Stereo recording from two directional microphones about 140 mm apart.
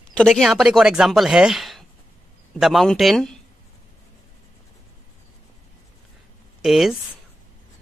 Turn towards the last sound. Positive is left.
turn(degrees=0)  # may be behind; listen again after turning